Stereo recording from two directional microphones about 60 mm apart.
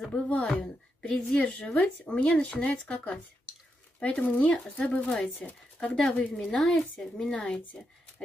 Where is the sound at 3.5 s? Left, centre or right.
Centre.